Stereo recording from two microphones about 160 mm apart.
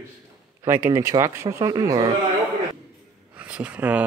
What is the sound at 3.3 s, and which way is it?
Speech, 10° right (ahead or behind).